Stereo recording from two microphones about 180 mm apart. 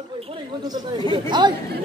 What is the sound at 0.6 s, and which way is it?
Speech, 25° right (ahead or behind).